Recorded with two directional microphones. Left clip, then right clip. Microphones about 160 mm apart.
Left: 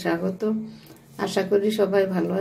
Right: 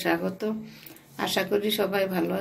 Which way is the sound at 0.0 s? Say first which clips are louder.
Left 2 dB; 5° left (ahead or behind).